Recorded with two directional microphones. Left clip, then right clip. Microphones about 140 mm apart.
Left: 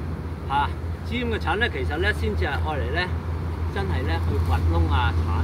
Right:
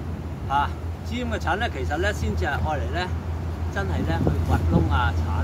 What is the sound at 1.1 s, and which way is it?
Speech, 15° right (ahead or behind).